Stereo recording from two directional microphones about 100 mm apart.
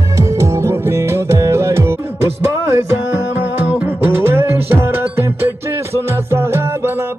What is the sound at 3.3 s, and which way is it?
Music, 20° right (ahead or behind).